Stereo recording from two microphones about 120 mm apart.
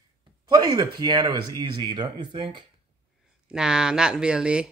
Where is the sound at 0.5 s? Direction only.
35° right (ahead or behind).